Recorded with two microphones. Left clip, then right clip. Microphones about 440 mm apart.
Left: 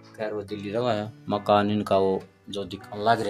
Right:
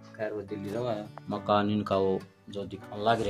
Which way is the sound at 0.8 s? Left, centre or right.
Right.